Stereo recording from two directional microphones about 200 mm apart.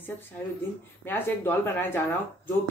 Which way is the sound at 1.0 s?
10° left (ahead or behind).